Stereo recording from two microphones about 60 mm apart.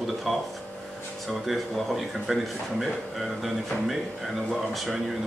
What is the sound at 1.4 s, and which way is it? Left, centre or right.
Speech, centre.